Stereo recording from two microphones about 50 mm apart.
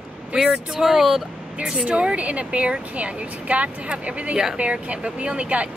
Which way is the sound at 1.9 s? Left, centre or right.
Right.